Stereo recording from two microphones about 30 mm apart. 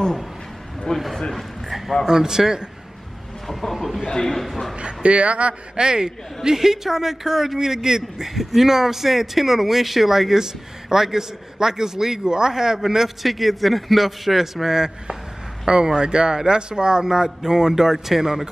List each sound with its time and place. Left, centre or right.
0.9 s a man's voice: left
1.7 s a sound: centre
2.0 s speech: centre
3.7 s a man's voice: centre
4.2 s speech: centre
4.7 s speech: right
5.8 s a man's voice: right
13.2 s a man's voice: centre
15.6 s a man's voice: right